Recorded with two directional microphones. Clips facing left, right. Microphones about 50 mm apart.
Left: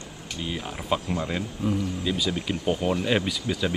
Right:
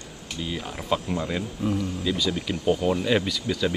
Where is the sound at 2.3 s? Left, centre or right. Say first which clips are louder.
Right 2 dB; left.